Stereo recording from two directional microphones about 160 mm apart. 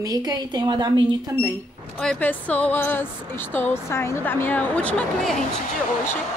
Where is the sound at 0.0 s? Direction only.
25° right (ahead or behind).